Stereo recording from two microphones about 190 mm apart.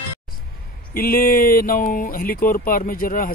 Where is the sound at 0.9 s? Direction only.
50° left (ahead or behind).